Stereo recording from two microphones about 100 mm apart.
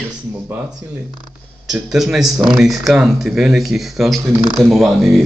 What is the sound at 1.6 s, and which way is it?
Speech, 5° right (ahead or behind).